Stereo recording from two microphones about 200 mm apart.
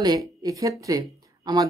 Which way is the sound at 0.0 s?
20° right (ahead or behind).